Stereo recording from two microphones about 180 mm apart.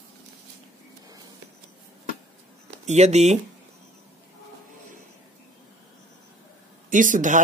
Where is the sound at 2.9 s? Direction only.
40° right (ahead or behind).